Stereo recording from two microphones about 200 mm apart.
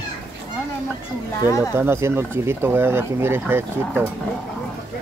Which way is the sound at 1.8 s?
10° right (ahead or behind).